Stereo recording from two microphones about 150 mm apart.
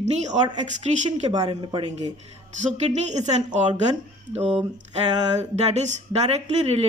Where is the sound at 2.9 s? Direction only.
50° right (ahead or behind).